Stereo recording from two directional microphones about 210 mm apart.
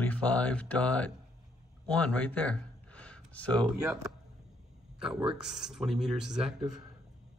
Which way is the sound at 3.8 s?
15° right (ahead or behind).